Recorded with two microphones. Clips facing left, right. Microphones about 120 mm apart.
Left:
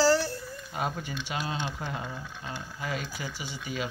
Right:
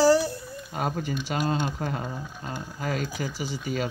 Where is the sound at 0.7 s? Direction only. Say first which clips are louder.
Right 4 dB; 45° right (ahead or behind).